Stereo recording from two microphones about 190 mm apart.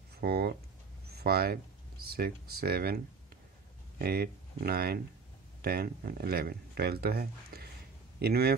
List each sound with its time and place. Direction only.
0.1 s speech: 55° right (ahead or behind)
4.0 s speech: 55° right (ahead or behind)